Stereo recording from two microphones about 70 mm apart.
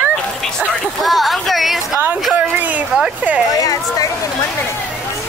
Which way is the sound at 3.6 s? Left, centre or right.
Left.